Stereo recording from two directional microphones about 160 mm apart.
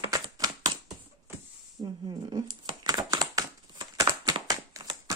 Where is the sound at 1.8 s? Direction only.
30° right (ahead or behind).